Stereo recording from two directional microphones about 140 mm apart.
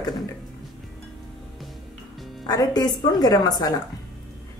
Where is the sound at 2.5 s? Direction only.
25° left (ahead or behind).